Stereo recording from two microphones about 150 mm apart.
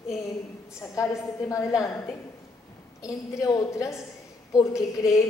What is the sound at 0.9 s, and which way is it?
A woman's voice, 20° left (ahead or behind).